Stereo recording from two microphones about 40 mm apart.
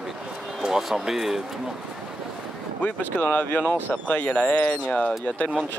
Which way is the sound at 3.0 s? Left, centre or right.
Left.